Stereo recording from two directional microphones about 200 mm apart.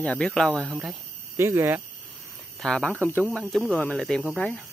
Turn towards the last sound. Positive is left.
turn(degrees=5)  # may be behind; listen again after turning